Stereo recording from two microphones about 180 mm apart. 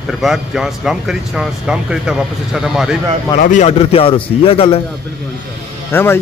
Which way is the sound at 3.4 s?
40° left (ahead or behind).